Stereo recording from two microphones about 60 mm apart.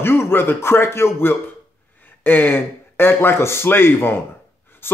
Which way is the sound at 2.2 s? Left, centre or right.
Left.